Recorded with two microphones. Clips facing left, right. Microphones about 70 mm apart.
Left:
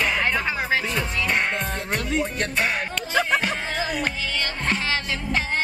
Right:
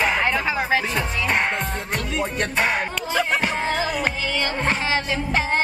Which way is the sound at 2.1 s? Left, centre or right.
Right.